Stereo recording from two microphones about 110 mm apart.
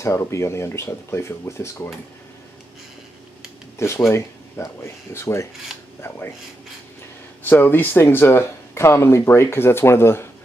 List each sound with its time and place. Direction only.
0.0 s speech: 25° left (ahead or behind)
3.7 s speech: 25° left (ahead or behind)
7.4 s speech: 20° left (ahead or behind)